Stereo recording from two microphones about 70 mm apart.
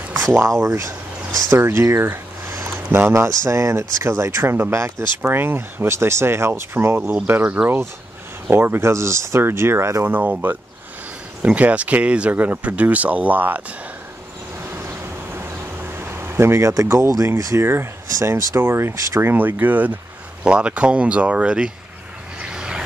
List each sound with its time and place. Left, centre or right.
0.2 s speech: right
1.9 s a sound: right
3.1 s speech: right
10.0 s speech: right
11.4 s speech: centre
14.8 s a sound: right
17.4 s speech: right
18.3 s speech: right
19.3 s speech: right
22.4 s vehicle: centre